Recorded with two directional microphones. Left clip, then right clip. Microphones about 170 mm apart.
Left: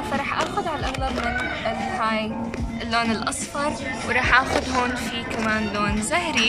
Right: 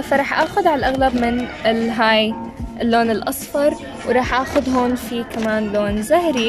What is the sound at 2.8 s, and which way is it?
Speech, 45° right (ahead or behind).